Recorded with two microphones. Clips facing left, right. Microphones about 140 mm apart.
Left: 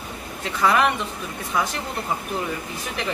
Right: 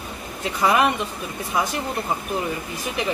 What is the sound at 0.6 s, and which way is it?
Speech, 15° right (ahead or behind).